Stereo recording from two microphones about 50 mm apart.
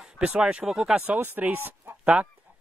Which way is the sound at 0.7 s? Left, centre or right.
Centre.